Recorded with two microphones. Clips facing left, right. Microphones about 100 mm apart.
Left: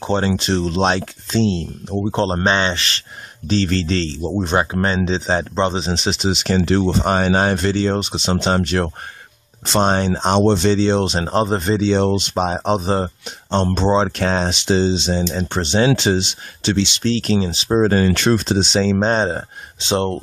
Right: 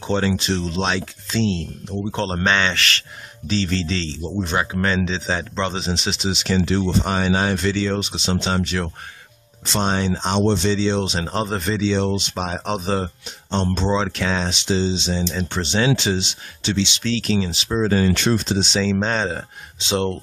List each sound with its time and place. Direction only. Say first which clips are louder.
0.0 s speech: left 2 dB; 35° left (ahead or behind)
3.4 s speech: left 4 dB; 50° left (ahead or behind); by 5.9 s 30° left (ahead or behind)
5.9 s speech: left 4 dB; 45° left (ahead or behind)
11.2 s speech: left 5 dB; 30° left (ahead or behind)
11.8 s speech: left 2 dB; 45° left (ahead or behind)
12.4 s speech: left 6 dB; 30° left (ahead or behind); by 16.9 s 55° left (ahead or behind)
17.0 s speech: left 3 dB; 40° left (ahead or behind); by 18.6 s 55° left (ahead or behind)
18.6 s speech: left 4 dB; 40° left (ahead or behind)